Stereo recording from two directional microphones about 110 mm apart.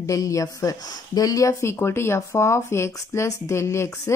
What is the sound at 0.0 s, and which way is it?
Speech, 30° left (ahead or behind).